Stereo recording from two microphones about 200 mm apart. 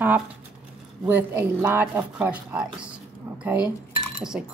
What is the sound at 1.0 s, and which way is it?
Speech, 10° right (ahead or behind).